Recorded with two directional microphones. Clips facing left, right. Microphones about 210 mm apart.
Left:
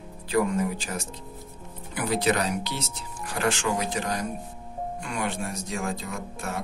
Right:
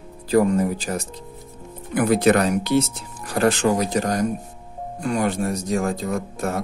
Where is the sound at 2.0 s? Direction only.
50° right (ahead or behind).